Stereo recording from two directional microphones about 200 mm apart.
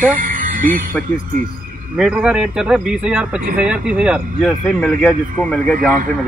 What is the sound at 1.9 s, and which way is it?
A man's voice, 5° right (ahead or behind).